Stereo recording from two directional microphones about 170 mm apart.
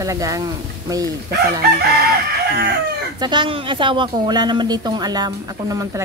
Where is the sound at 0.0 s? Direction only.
20° right (ahead or behind).